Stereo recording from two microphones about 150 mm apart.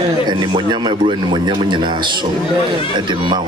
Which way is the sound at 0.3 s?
30° right (ahead or behind).